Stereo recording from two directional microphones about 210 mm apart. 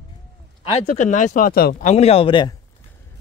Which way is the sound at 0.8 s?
35° left (ahead or behind).